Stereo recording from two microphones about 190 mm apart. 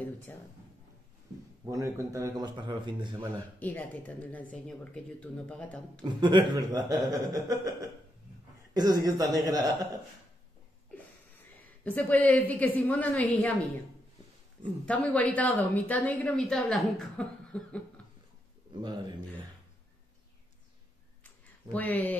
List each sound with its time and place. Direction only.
0.0 s speech: 10° left (ahead or behind)
1.7 s speech: 15° right (ahead or behind)
3.5 s speech: 10° left (ahead or behind)
6.0 s speech: 25° right (ahead or behind)
11.6 s speech: 10° left (ahead or behind)
14.9 s speech: 10° left (ahead or behind)
18.8 s speech: 20° right (ahead or behind)
21.7 s speech: 10° left (ahead or behind)